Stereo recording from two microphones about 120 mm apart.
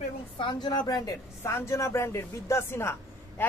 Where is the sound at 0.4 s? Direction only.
40° left (ahead or behind).